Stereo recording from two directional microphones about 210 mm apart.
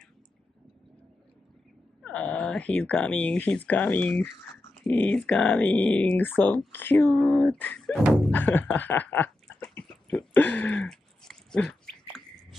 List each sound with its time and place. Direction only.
2.0 s speech: 5° left (ahead or behind)